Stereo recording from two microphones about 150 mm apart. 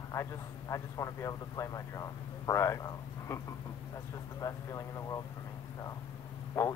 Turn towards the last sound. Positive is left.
turn(degrees=20)  # may be behind; listen again after turning